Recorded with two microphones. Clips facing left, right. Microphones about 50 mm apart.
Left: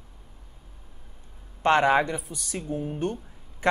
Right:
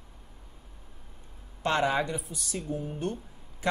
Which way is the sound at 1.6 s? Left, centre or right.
Left.